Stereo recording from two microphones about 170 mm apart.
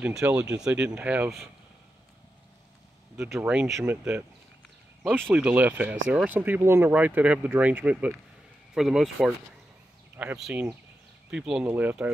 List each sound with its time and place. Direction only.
0.0 s speech: 10° right (ahead or behind)
3.3 s speech: 5° right (ahead or behind)
5.3 s speech: 10° right (ahead or behind)